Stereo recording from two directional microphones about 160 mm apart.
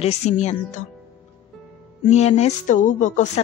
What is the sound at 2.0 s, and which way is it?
Speech, 45° left (ahead or behind).